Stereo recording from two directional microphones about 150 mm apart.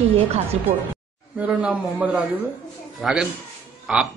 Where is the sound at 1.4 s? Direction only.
10° right (ahead or behind).